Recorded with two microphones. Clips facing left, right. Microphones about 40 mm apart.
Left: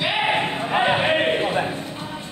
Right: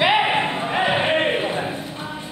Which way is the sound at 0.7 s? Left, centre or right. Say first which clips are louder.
Left 2 dB; centre.